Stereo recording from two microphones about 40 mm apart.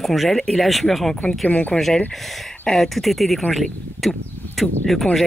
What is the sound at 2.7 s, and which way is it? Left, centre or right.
Speech, centre.